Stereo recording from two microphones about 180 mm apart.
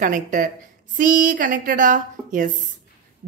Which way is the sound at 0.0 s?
50° right (ahead or behind).